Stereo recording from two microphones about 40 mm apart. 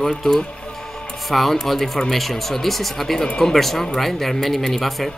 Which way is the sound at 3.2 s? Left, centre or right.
Centre.